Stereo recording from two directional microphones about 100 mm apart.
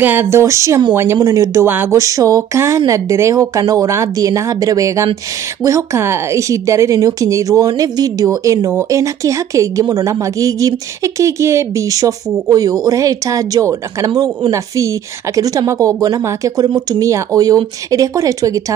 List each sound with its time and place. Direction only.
0.0 s speech: 20° right (ahead or behind)
1.7 s speech: 20° right (ahead or behind)
2.0 s a woman's voice: 35° right (ahead or behind)
15.3 s a woman's voice: 35° right (ahead or behind)